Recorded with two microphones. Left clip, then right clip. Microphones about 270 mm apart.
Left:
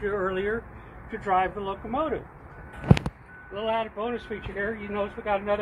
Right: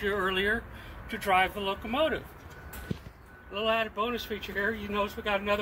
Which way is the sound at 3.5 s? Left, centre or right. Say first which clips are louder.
Even; centre.